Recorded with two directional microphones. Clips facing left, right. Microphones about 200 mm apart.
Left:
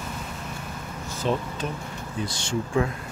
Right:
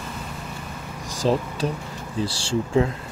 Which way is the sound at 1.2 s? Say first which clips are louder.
Right 5 dB; 35° right (ahead or behind).